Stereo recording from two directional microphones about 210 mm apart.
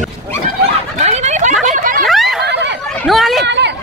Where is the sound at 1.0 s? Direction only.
30° right (ahead or behind).